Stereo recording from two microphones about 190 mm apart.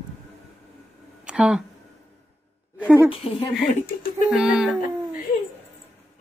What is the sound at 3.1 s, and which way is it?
Speech, 30° left (ahead or behind).